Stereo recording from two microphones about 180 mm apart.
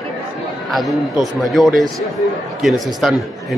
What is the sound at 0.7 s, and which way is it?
A man's voice, centre (ahead or behind).